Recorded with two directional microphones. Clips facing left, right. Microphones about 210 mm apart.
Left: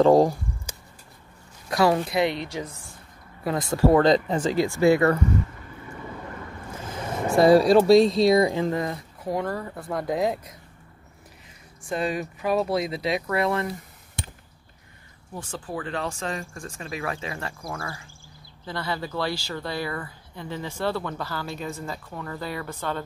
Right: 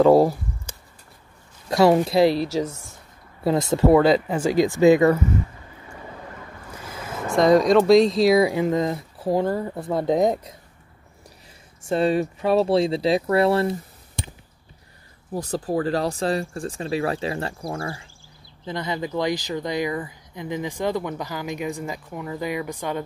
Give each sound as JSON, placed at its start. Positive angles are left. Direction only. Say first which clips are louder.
{"t": 0.0, "sound": "a woman's voice", "louder": "right 2 dB", "side_deg": -10}
{"t": 1.7, "sound": "speech", "louder": "right 5 dB", "side_deg": -25}
{"t": 3.9, "sound": "a woman's voice", "louder": "right 3 dB", "side_deg": -10}
{"t": 7.4, "sound": "speech", "louder": "even", "side_deg": 5}
{"t": 11.9, "sound": "speech", "louder": "right 7 dB", "side_deg": -30}
{"t": 15.3, "sound": "speech", "louder": "right 9 dB", "side_deg": -40}
{"t": 18.7, "sound": "a woman's voice", "louder": "right 3 dB", "side_deg": -20}